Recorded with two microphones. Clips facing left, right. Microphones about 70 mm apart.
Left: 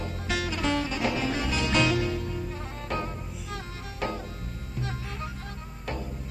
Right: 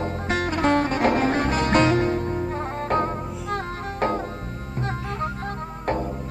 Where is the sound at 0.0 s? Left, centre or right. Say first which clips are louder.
Right 6 dB; right.